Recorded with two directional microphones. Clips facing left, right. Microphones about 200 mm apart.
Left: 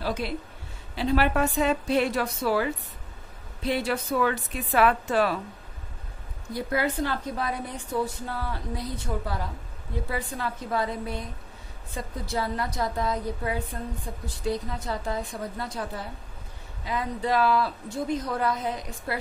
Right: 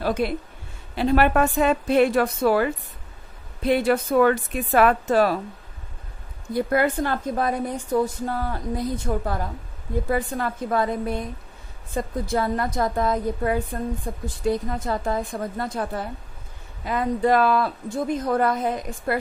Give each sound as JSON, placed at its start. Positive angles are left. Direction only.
{"t": 0.0, "sound": "a woman's voice", "side_deg": -55}
{"t": 6.5, "sound": "a woman's voice", "side_deg": -55}